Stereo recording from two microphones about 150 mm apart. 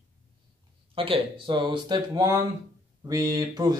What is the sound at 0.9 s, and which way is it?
Speech, 35° right (ahead or behind).